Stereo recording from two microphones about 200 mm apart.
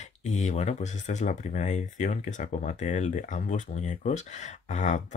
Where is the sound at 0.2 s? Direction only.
35° left (ahead or behind).